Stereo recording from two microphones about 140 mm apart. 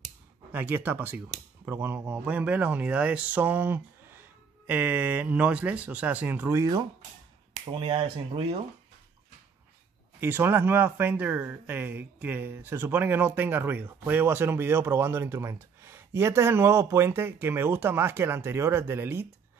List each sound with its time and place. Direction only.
0.5 s speech: 15° right (ahead or behind)
6.6 s speech: 30° right (ahead or behind)
10.2 s speech: 15° right (ahead or behind)